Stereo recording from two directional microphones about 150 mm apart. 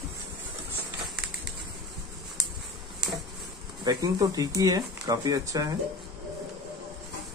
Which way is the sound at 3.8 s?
25° right (ahead or behind).